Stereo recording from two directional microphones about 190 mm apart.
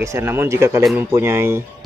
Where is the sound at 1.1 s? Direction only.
10° right (ahead or behind).